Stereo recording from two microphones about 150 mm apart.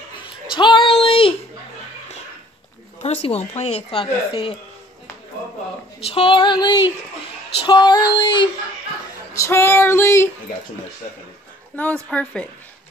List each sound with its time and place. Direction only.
0.2 s a sound: 30° left (ahead or behind)
3.0 s speech: 45° left (ahead or behind)
6.0 s child singing: 40° left (ahead or behind)
9.3 s female singing: 20° left (ahead or behind)
11.7 s female singing: 10° left (ahead or behind)